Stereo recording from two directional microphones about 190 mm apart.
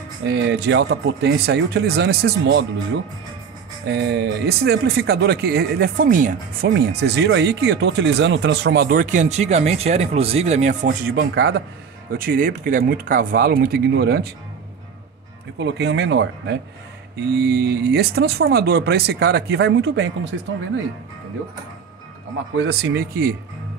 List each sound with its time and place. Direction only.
0.3 s speech: 70° right (ahead or behind)
3.8 s speech: 60° right (ahead or behind)
15.6 s speech: 65° right (ahead or behind)
22.6 s speech: 65° right (ahead or behind)